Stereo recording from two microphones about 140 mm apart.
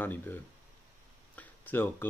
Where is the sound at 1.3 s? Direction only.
15° left (ahead or behind).